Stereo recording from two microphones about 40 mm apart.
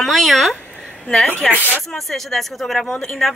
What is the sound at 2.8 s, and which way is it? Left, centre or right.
Speech, centre.